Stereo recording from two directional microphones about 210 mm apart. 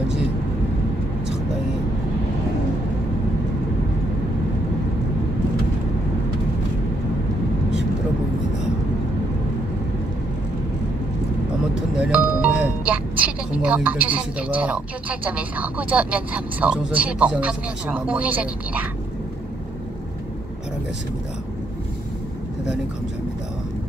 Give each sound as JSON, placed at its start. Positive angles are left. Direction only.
{"t": 12.0, "sound": "music", "side_deg": -5}
{"t": 13.2, "sound": "a woman's voice", "side_deg": -5}